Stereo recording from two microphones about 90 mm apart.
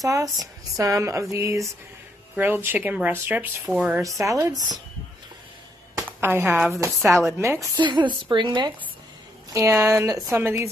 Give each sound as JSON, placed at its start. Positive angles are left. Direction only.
{"t": 0.0, "sound": "speech", "side_deg": -40}
{"t": 2.3, "sound": "speech", "side_deg": -25}
{"t": 3.6, "sound": "speech", "side_deg": -15}
{"t": 4.0, "sound": "speech", "side_deg": -40}
{"t": 6.2, "sound": "speech", "side_deg": -25}
{"t": 7.7, "sound": "a woman's voice", "side_deg": -55}
{"t": 9.5, "sound": "speech", "side_deg": -30}
{"t": 10.3, "sound": "speech", "side_deg": -25}